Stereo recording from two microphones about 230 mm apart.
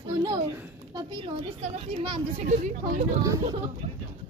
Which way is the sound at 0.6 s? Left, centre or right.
Centre.